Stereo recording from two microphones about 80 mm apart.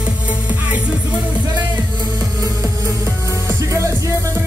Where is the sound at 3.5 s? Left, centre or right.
Right.